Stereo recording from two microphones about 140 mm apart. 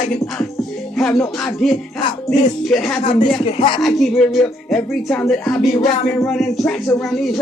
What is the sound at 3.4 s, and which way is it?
Speech, 40° left (ahead or behind).